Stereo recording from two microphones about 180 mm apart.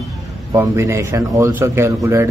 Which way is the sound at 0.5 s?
15° right (ahead or behind).